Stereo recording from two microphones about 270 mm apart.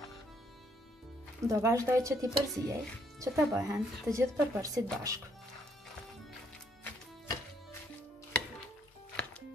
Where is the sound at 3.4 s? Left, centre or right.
Centre.